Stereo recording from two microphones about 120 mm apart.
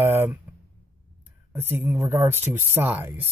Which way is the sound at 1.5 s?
15° right (ahead or behind).